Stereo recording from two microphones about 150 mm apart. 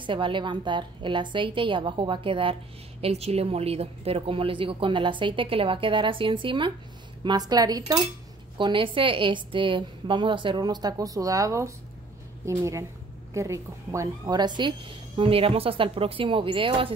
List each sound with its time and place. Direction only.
0.0 s speech: 35° right (ahead or behind)